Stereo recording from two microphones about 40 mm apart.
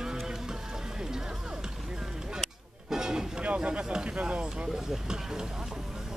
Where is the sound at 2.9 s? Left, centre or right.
Centre.